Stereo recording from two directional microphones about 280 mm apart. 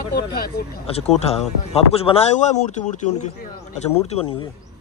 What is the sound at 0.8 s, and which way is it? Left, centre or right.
Speech, left.